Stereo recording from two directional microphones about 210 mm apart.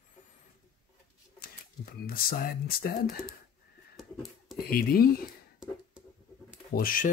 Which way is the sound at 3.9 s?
Centre (ahead or behind).